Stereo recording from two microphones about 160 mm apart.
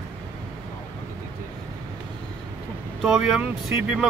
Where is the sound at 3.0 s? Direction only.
Centre (ahead or behind).